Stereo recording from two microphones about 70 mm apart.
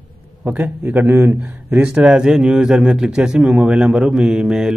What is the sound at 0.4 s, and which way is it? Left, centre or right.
A man's voice, right.